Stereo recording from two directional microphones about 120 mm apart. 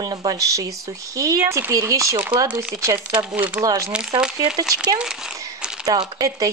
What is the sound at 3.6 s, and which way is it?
Speech, 30° right (ahead or behind).